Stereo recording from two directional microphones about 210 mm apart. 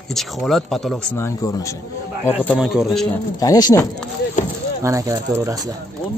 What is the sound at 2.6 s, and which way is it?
Speech, centre (ahead or behind).